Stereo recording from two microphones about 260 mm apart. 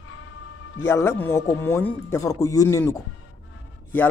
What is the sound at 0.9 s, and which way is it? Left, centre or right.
Speech, centre.